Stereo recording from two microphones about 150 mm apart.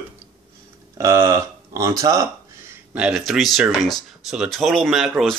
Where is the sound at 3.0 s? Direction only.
5° right (ahead or behind).